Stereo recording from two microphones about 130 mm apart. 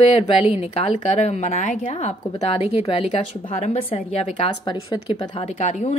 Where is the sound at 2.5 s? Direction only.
45° left (ahead or behind).